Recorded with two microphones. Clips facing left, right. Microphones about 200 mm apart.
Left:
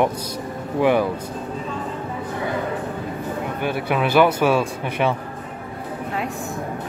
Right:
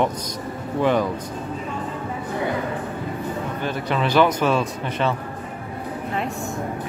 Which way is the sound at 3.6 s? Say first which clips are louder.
Left 3 dB; 10° left (ahead or behind).